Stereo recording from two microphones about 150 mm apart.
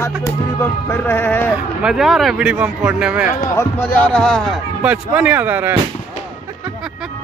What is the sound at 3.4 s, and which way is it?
Speech, 20° left (ahead or behind).